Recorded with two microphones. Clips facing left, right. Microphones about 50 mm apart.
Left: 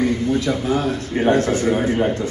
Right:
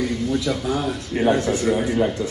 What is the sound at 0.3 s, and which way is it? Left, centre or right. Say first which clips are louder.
A man's voice: left 3 dB; left.